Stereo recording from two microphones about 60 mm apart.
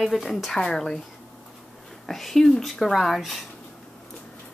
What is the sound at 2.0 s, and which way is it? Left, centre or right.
Speech, centre.